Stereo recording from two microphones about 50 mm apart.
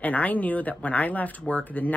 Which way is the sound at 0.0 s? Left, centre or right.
Left.